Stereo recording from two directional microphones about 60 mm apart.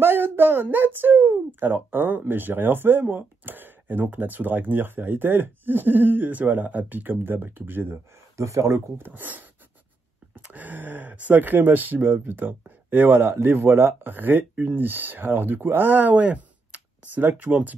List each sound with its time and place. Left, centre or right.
0.0 s speech: right
8.4 s speech: right
8.9 s speech: right